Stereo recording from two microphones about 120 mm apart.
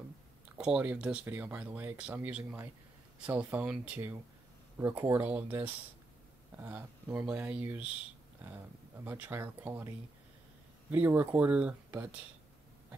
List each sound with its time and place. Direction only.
0.6 s speech: 10° right (ahead or behind)